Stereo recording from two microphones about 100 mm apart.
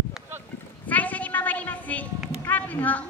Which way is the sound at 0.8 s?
15° left (ahead or behind).